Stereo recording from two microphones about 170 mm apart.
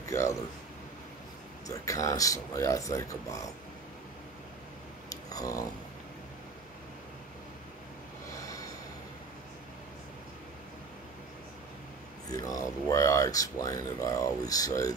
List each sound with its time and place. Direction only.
0.0 s speech: 15° left (ahead or behind)
1.7 s speech: 20° left (ahead or behind)
5.1 s a sound: 20° left (ahead or behind)
12.3 s speech: 20° left (ahead or behind)